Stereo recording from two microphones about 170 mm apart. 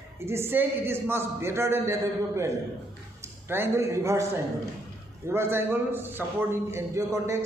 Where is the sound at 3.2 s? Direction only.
15° right (ahead or behind).